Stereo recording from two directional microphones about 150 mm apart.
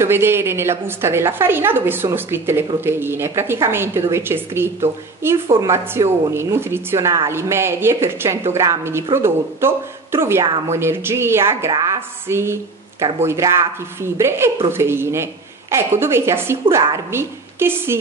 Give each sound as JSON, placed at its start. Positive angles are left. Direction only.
{"t": 0.0, "sound": "a woman's voice", "side_deg": -15}